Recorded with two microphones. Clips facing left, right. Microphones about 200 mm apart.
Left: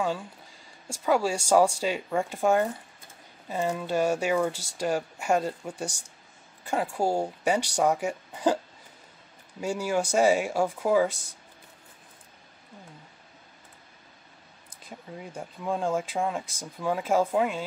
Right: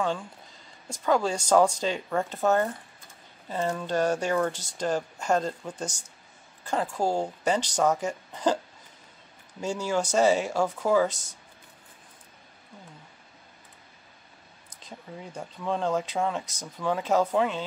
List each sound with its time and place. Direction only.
0.8 s speech: 10° left (ahead or behind)
9.6 s speech: 10° left (ahead or behind)
14.9 s speech: 5° left (ahead or behind)